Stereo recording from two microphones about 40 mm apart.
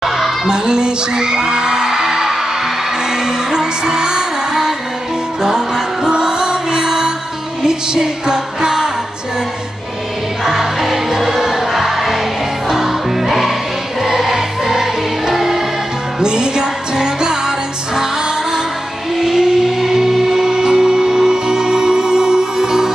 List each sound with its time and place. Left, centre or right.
0.0 s singing: centre
3.3 s music: centre
6.0 s music: right
10.4 s music: centre
16.2 s music: centre
19.1 s music: centre